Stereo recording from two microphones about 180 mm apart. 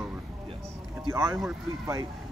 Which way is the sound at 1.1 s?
15° right (ahead or behind).